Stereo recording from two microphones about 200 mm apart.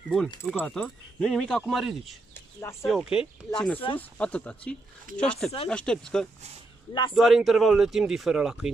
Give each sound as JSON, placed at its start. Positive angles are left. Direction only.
{"t": 0.5, "sound": "speech", "side_deg": 5}
{"t": 2.3, "sound": "a sound", "side_deg": 10}
{"t": 2.9, "sound": "speech", "side_deg": 0}
{"t": 6.9, "sound": "speech", "side_deg": 25}
{"t": 7.2, "sound": "speech", "side_deg": 0}